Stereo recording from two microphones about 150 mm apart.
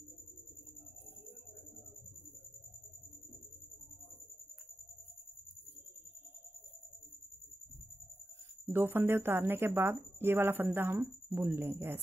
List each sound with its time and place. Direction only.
8.6 s speech: 15° right (ahead or behind)